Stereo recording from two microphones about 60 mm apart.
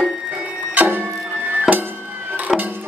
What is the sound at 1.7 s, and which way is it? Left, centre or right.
Music, centre.